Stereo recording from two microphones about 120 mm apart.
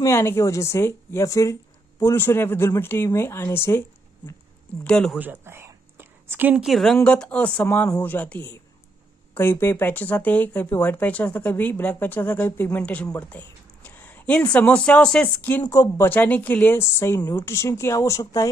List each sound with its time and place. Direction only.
0.0 s a woman's voice: 20° left (ahead or behind)
4.8 s speech: 5° left (ahead or behind)
5.2 s a sound: 15° right (ahead or behind)
6.6 s speech: centre (ahead or behind)
15.7 s a woman's voice: 20° left (ahead or behind)